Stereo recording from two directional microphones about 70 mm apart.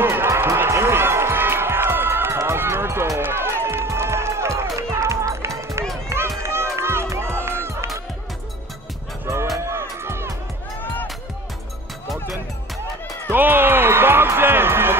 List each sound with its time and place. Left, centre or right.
0.0 s music: right
6.0 s run: right
9.7 s music: right
13.3 s music: right